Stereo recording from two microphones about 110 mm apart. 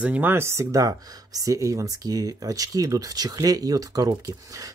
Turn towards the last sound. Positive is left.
turn(degrees=-30)  # may be behind; listen again after turning